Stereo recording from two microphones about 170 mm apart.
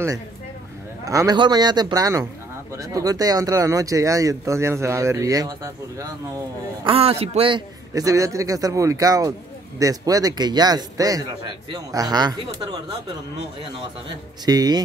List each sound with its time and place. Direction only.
1.0 s speech: 20° right (ahead or behind)
6.9 s a man's voice: 35° right (ahead or behind)
7.9 s speech: 20° right (ahead or behind)
14.0 s speech: 25° right (ahead or behind)